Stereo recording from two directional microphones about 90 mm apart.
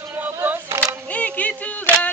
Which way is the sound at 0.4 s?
30° right (ahead or behind).